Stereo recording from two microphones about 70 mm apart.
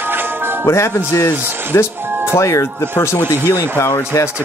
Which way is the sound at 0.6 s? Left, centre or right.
Left.